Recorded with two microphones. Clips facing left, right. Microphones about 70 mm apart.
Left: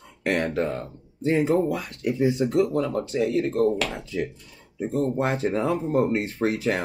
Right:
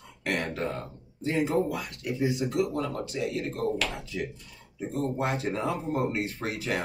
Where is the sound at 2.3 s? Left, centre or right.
Left.